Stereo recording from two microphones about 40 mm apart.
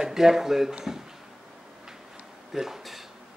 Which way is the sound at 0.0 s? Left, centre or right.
Centre.